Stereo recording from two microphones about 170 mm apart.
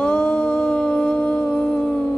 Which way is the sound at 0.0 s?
5° left (ahead or behind).